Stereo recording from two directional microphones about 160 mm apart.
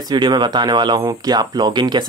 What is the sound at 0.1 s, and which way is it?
Speech, 30° right (ahead or behind).